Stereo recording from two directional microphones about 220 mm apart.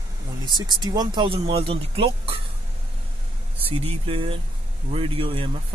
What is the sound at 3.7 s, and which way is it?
Speech, 25° right (ahead or behind).